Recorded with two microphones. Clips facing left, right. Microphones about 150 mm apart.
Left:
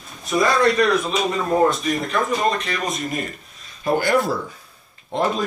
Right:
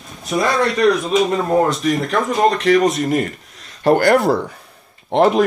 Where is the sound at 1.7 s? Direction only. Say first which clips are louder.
Right 4 dB; 85° right.